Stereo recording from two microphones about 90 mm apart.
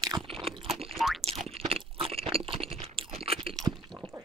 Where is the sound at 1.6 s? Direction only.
90° right.